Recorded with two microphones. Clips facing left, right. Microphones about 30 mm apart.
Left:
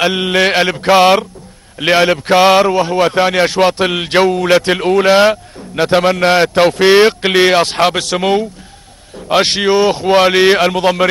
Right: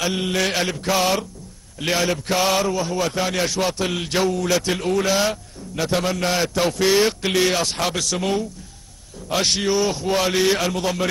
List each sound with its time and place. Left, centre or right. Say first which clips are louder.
0.0 s a man's voice: left 9 dB; left